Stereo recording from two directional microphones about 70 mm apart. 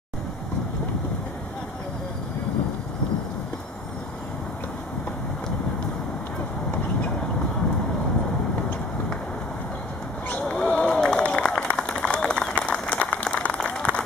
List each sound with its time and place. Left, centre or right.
10.4 s run: centre
13.1 s applause: centre